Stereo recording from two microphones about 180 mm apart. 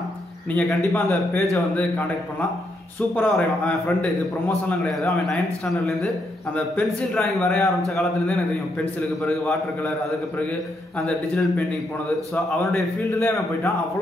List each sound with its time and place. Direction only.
0.5 s a man's voice: 10° left (ahead or behind)
3.2 s a man's voice: 5° left (ahead or behind)
6.5 s a man's voice: 5° left (ahead or behind)
11.1 s a man's voice: 5° left (ahead or behind)
12.7 s a man's voice: 10° left (ahead or behind)